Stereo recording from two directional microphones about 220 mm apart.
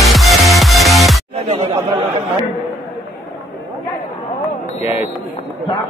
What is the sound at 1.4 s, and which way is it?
Chatter, 20° right (ahead or behind).